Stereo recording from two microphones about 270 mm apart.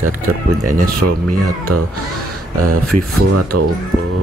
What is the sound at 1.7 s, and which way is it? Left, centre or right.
Speech, right.